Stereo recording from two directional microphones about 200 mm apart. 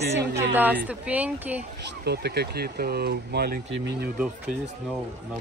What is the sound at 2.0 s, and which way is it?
Speech, 55° right (ahead or behind).